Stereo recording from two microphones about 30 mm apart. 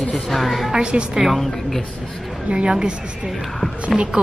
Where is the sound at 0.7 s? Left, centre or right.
Right.